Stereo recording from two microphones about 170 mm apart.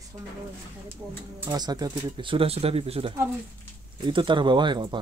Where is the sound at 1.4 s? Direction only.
25° right (ahead or behind).